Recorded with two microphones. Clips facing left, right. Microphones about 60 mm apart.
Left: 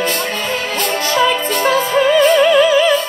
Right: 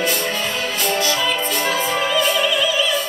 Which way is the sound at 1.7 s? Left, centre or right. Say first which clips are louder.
Left 9 dB; left.